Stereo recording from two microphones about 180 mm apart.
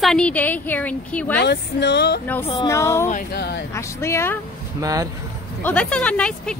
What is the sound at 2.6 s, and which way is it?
Speech, 15° left (ahead or behind).